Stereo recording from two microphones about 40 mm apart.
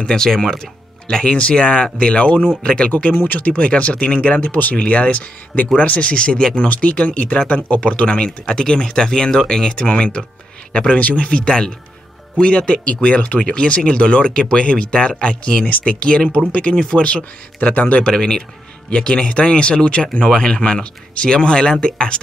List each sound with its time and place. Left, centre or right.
0.0 s speech: centre
1.0 s speech: left
4.4 s speech: left
4.7 s speech: left
6.7 s speech: left
11.0 s speech: left
11.2 s speech: left
18.0 s speech: centre